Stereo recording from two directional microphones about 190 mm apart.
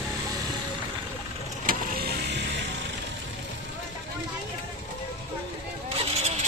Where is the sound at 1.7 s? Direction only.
60° right (ahead or behind).